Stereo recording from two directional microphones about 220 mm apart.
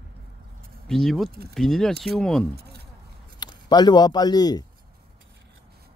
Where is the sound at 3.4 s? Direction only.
20° left (ahead or behind).